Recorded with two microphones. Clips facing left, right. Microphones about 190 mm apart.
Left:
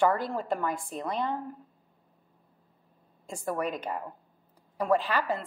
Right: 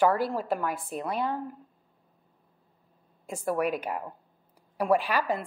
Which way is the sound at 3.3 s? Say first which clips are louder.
Right 4 dB; 10° right (ahead or behind).